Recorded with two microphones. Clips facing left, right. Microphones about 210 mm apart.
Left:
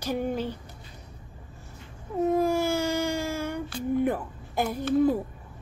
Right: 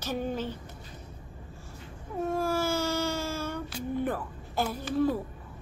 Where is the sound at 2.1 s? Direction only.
20° left (ahead or behind).